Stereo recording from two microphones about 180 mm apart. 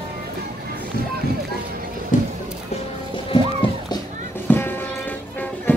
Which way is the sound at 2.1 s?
45° left (ahead or behind).